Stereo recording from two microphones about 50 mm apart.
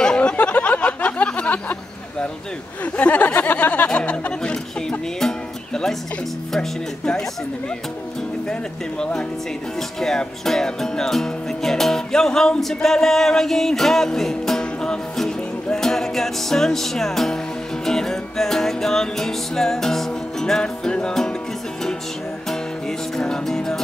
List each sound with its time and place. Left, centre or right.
0.0 s a sound: centre
2.8 s speech: left
4.0 s music: left
9.8 s speech: centre
14.6 s music: centre
17.8 s speech: centre
22.5 s music: centre